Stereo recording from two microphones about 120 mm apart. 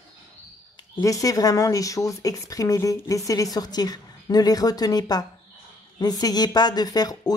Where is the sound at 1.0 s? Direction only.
30° left (ahead or behind).